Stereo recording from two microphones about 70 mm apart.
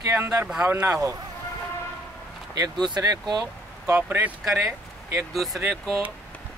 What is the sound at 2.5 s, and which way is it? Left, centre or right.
Speech, right.